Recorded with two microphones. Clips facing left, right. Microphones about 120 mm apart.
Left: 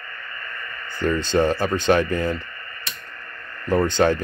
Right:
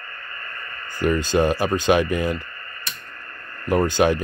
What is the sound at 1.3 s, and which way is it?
Speech, 15° right (ahead or behind).